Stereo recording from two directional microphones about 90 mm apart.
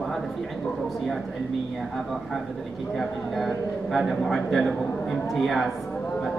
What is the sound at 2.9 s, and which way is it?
A man's voice, centre (ahead or behind).